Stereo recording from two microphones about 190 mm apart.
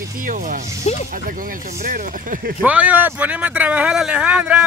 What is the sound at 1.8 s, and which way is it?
Speech, 45° right (ahead or behind).